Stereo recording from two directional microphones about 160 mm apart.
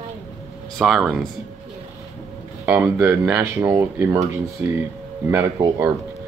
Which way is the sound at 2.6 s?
10° right (ahead or behind).